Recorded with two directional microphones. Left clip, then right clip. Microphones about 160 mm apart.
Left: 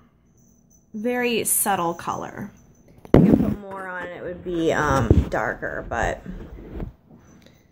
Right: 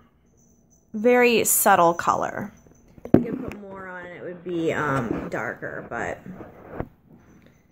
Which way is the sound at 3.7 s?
30° right (ahead or behind).